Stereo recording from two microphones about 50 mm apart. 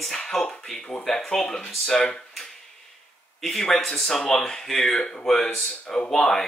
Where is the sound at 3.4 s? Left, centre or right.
Centre.